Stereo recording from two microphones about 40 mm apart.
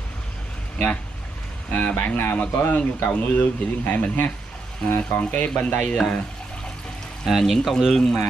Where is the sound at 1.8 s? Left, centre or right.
Left.